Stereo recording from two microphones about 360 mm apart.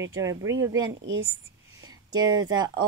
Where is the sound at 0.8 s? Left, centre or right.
Right.